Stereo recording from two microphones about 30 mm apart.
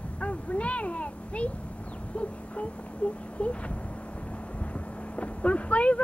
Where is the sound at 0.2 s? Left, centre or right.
Left.